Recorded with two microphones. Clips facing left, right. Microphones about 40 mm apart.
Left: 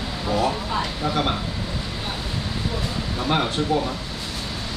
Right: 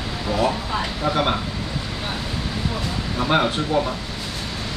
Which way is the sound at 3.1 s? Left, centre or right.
Centre.